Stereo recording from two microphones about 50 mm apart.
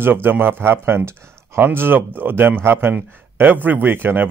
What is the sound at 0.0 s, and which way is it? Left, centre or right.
Speech, right.